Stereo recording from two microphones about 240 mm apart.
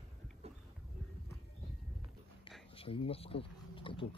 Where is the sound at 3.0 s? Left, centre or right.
Left.